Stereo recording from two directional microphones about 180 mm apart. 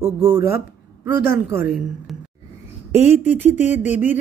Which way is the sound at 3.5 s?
40° left (ahead or behind).